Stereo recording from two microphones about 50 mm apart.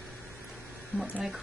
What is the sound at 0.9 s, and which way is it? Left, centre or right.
Speech, left.